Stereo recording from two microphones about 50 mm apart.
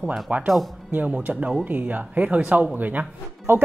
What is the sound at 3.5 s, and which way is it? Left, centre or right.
Speech, right.